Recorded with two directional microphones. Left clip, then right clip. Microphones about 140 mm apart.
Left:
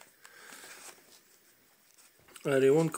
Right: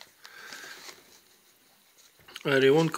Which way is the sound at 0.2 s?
15° left (ahead or behind).